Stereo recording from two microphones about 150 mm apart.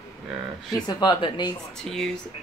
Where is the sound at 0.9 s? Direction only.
30° left (ahead or behind).